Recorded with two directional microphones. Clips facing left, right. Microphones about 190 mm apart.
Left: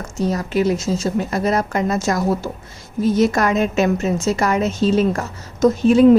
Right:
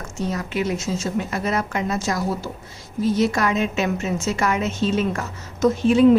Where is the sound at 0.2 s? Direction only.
40° left (ahead or behind).